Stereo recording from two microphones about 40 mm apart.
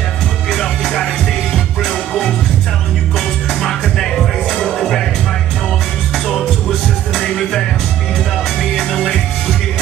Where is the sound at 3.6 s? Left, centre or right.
Centre.